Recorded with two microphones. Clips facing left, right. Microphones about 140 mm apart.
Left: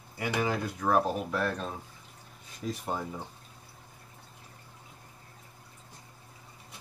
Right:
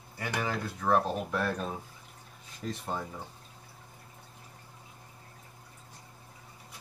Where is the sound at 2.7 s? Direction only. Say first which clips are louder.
Left 2 dB; 5° left (ahead or behind).